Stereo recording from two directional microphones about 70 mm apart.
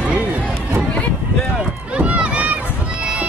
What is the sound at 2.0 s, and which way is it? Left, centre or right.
Run, centre.